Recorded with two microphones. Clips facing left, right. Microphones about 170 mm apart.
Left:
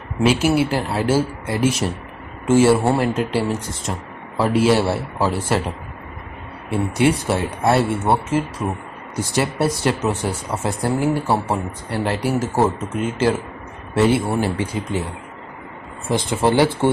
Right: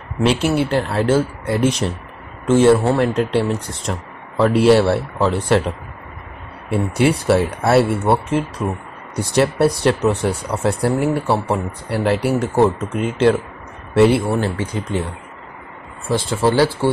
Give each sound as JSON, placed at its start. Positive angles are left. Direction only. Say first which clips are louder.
{"t": 0.2, "sound": "speech", "louder": "even", "side_deg": 5}
{"t": 6.7, "sound": "speech", "louder": "right 1 dB", "side_deg": 0}
{"t": 14.4, "sound": "speech", "louder": "even", "side_deg": 15}
{"t": 16.1, "sound": "speech", "louder": "right 1 dB", "side_deg": 20}